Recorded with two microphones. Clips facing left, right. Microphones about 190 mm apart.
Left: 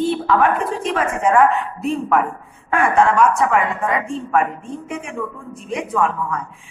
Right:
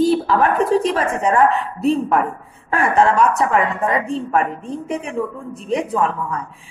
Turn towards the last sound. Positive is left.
turn(degrees=-35)  # may be behind; listen again after turning